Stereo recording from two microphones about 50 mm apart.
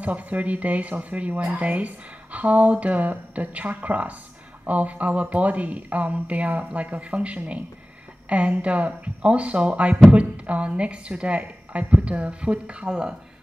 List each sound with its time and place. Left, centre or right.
0.0 s a woman's voice: right